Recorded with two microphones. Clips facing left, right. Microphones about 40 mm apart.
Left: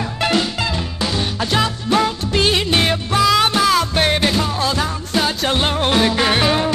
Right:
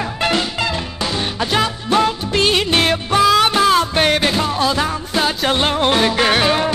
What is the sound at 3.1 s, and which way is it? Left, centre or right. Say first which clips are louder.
Music: right 2 dB; right.